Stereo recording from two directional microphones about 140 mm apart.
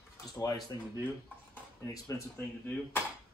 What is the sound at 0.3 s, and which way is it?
Speech, 25° left (ahead or behind).